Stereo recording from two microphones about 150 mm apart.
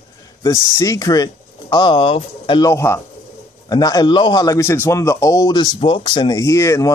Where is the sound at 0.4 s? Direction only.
25° left (ahead or behind).